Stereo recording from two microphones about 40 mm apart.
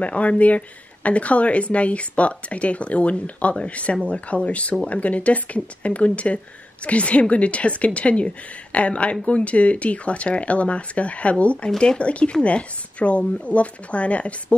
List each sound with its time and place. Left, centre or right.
0.0 s a woman's voice: left